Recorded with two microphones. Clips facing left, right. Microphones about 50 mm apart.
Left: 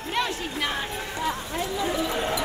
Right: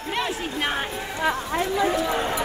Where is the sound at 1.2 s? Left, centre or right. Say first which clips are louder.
Right 5 dB; right.